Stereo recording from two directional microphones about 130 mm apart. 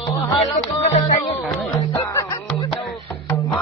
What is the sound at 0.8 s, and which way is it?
Music, 70° left (ahead or behind).